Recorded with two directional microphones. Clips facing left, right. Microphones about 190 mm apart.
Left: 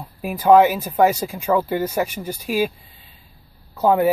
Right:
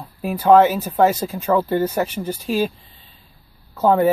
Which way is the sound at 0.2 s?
15° left (ahead or behind).